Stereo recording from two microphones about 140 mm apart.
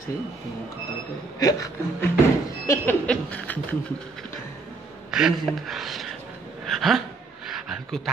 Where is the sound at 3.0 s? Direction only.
10° left (ahead or behind).